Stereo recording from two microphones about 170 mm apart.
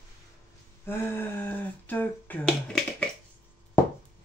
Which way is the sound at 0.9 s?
10° left (ahead or behind).